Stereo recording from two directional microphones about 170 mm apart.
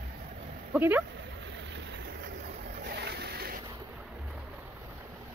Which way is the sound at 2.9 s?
75° right (ahead or behind).